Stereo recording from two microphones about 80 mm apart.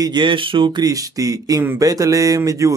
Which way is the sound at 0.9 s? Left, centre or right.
Right.